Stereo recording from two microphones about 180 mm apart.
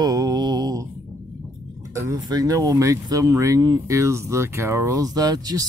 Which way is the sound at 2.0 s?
20° right (ahead or behind).